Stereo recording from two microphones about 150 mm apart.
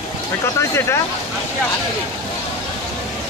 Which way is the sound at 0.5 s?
20° left (ahead or behind).